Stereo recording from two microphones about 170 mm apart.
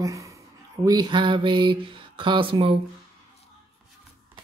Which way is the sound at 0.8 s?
25° right (ahead or behind).